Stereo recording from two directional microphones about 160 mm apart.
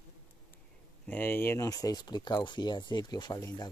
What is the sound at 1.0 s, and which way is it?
Speech, 10° left (ahead or behind).